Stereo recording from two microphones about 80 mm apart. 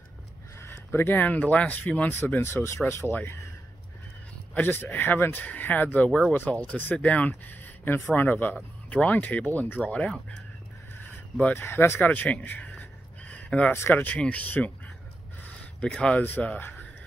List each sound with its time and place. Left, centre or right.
0.6 s speech: left
4.6 s speech: left
11.5 s speech: left
13.7 s speech: left
15.4 s a sound: centre
16.2 s speech: left